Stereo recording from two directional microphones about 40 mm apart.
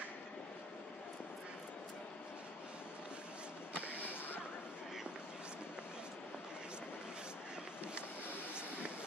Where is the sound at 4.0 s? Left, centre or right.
Left.